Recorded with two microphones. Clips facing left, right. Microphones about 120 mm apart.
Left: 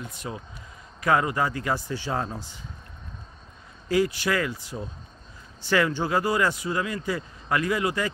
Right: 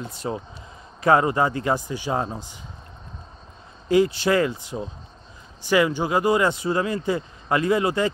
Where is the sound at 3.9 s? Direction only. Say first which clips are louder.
Right 5 dB; 25° right (ahead or behind).